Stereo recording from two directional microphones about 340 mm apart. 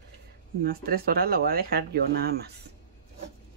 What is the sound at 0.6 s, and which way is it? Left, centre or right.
Speech, right.